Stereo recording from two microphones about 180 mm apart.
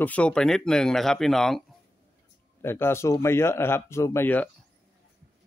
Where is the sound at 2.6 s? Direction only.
15° left (ahead or behind).